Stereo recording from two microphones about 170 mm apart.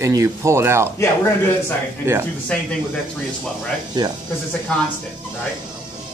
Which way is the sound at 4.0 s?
25° right (ahead or behind).